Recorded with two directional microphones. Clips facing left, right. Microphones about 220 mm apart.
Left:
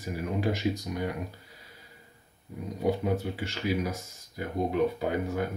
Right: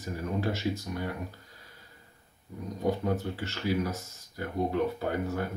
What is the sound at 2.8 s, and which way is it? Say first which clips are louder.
Speech: left 1 dB; 10° left (ahead or behind).